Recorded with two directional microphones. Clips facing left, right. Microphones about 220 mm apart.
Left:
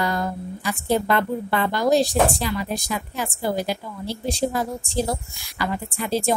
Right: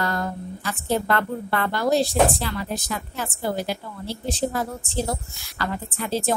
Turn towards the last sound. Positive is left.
turn(degrees=15)  # may be behind; listen again after turning